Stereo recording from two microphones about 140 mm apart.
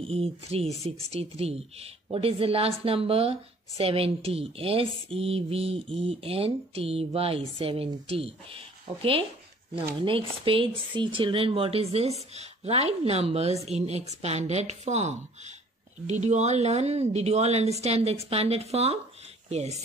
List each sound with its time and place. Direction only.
0.0 s speech: 45° right (ahead or behind)